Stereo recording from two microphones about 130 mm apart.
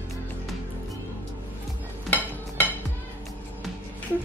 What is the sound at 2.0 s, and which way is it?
Cutlery, 15° left (ahead or behind).